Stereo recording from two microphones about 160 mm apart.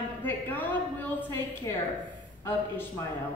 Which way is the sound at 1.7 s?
20° left (ahead or behind).